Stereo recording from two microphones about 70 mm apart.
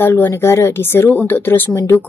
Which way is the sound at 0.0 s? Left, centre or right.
Left.